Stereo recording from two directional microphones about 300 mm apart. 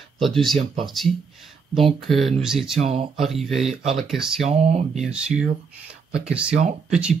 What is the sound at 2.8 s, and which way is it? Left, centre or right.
Speech, centre.